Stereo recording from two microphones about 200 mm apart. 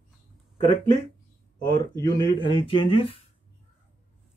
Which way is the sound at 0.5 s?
25° left (ahead or behind).